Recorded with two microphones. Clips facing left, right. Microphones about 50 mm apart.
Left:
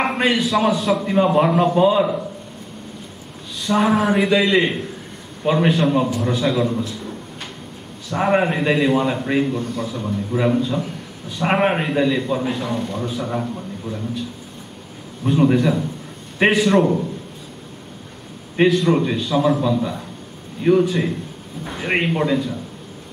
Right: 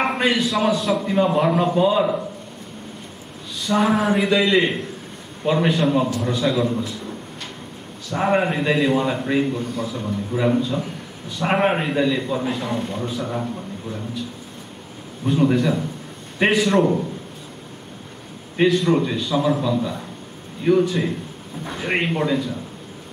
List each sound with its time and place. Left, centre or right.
0.0 s a man's voice: centre
1.0 s a man's voice: centre
3.6 s a man's voice: centre
8.2 s a man's voice: centre
15.2 s a man's voice: centre
18.7 s a man's voice: centre
20.6 s a man's voice: centre